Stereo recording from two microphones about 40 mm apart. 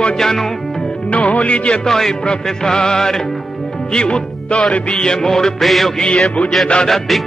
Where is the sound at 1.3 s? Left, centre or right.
Left.